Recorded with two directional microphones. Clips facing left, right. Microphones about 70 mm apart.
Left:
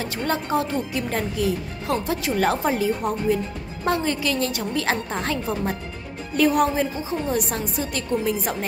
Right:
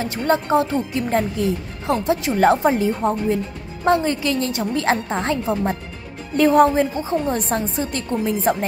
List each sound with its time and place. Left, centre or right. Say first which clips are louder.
0.0 s a woman's voice: right 5 dB; right